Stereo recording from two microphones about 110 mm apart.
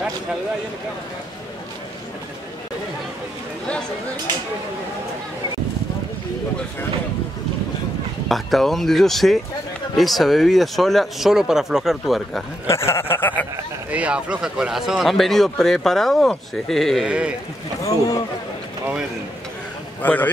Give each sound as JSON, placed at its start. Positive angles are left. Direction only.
{"t": 8.3, "sound": "speech", "side_deg": 0}
{"t": 12.6, "sound": "chuckle", "side_deg": 25}
{"t": 13.9, "sound": "speech", "side_deg": -10}
{"t": 17.0, "sound": "speech", "side_deg": -10}
{"t": 17.8, "sound": "speech", "side_deg": 35}
{"t": 20.0, "sound": "a man's voice", "side_deg": 15}